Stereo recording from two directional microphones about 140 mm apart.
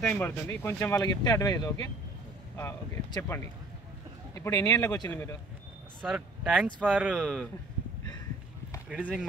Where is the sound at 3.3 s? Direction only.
20° left (ahead or behind).